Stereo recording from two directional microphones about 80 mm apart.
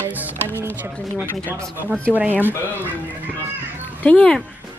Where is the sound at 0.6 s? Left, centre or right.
Right.